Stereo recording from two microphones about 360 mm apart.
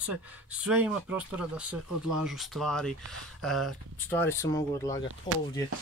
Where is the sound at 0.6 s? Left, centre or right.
Centre.